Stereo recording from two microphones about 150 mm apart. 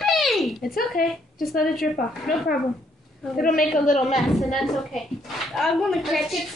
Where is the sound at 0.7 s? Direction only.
75° left (ahead or behind).